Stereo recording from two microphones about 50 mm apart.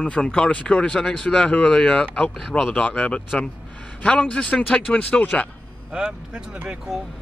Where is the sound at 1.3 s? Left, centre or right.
Left.